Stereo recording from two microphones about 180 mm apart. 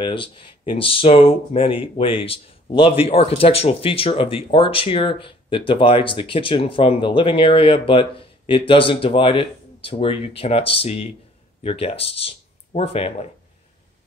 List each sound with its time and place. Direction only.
0.0 s speech: 30° left (ahead or behind)